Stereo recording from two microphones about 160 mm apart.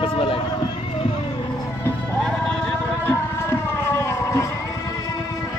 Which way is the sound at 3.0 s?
15° left (ahead or behind).